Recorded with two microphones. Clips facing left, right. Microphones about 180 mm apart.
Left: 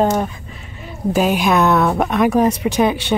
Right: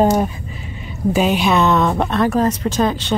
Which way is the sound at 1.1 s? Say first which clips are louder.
Even; 5° left (ahead or behind).